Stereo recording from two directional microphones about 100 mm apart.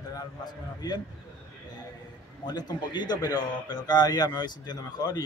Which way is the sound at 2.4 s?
45° left (ahead or behind).